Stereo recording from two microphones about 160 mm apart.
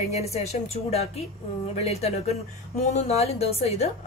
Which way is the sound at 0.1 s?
40° left (ahead or behind).